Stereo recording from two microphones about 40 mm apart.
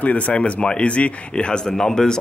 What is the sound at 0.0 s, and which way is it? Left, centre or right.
Speech, left.